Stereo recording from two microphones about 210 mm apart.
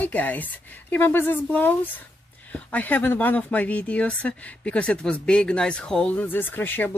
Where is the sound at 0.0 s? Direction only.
10° left (ahead or behind).